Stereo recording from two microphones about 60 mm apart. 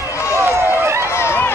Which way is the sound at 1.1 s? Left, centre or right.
Left.